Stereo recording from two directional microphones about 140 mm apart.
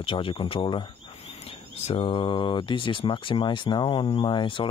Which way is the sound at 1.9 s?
45° left (ahead or behind).